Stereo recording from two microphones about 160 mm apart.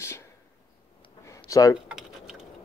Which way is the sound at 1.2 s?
20° left (ahead or behind).